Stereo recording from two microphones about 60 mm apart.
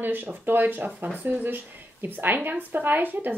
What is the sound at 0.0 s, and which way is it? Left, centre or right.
Speech, right.